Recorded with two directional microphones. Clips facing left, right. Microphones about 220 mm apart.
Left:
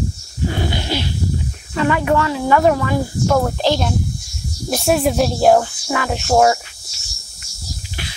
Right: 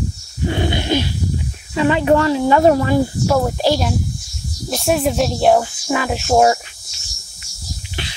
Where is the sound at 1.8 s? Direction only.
25° right (ahead or behind).